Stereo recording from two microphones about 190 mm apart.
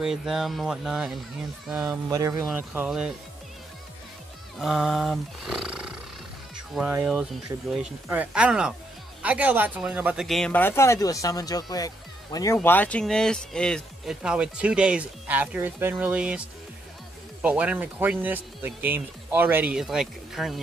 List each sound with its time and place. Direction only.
0.0 s speech: centre (ahead or behind)
1.8 s speech: 20° right (ahead or behind)
4.6 s speech: centre (ahead or behind); by 12.5 s 20° left (ahead or behind)
12.5 s speech: 10° left (ahead or behind)